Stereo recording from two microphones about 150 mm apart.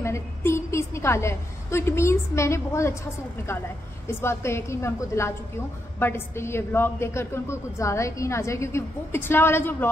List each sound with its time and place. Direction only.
0.0 s a woman's voice: 20° left (ahead or behind)
4.2 s a woman's voice: 15° left (ahead or behind)